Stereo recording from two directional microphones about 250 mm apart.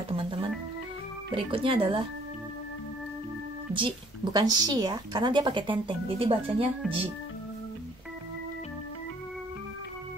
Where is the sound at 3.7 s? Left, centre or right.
Centre.